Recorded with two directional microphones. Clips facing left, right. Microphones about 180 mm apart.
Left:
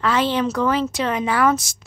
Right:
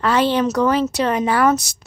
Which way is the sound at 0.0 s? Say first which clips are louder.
Right 3 dB; 40° right (ahead or behind).